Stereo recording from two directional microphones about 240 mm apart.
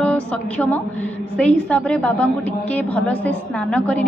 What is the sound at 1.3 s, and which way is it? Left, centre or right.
A woman's voice, centre.